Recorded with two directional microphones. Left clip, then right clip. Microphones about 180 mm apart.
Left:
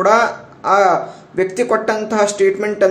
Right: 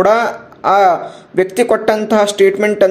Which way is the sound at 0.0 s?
35° right (ahead or behind).